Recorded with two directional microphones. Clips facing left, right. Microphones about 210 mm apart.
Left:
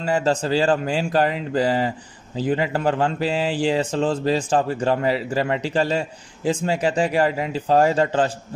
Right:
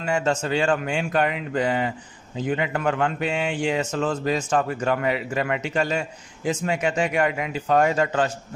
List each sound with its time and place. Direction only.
0.0 s speech: 35° left (ahead or behind)